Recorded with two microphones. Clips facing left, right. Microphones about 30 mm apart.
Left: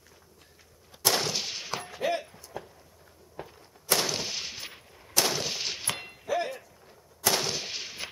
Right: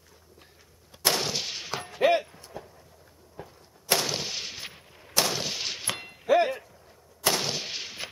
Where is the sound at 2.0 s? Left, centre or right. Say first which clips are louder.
Right 8 dB; right.